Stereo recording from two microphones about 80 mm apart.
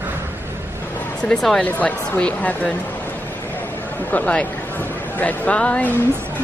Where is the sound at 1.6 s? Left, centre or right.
Centre.